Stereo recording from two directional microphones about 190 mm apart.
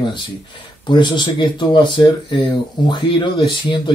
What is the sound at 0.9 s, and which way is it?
Speech, 25° left (ahead or behind).